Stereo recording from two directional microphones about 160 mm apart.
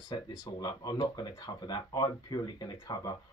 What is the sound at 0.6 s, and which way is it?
Speech, 25° left (ahead or behind).